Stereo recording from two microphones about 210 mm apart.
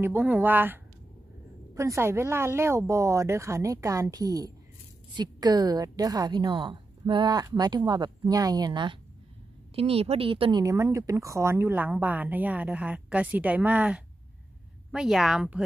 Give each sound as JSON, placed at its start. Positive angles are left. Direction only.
{"t": 0.0, "sound": "a woman's voice", "side_deg": -10}
{"t": 1.8, "sound": "a woman's voice", "side_deg": -15}